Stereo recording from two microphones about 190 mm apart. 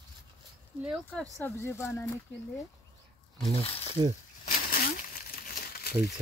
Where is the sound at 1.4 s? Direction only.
15° left (ahead or behind).